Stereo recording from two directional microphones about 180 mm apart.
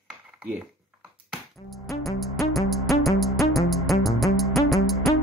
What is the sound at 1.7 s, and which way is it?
Music, centre (ahead or behind).